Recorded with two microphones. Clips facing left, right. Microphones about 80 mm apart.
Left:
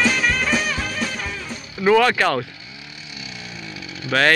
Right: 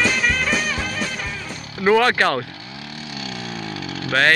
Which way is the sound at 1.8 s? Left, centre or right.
Right.